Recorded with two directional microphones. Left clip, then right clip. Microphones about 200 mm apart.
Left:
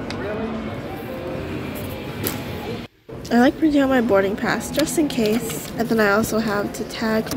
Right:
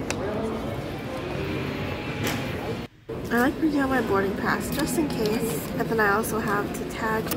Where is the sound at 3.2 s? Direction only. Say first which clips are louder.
Left 6 dB; 15° left (ahead or behind).